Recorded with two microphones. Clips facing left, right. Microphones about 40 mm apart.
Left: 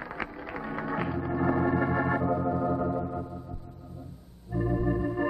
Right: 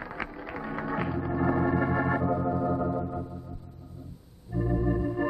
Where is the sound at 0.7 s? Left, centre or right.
Centre.